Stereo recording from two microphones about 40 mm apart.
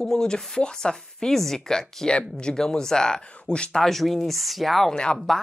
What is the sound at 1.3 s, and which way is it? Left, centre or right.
Speech, centre.